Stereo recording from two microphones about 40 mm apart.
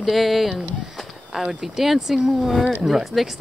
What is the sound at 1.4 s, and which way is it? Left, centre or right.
Speech, centre.